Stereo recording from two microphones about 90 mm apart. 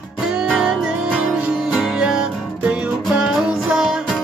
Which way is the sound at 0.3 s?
10° right (ahead or behind).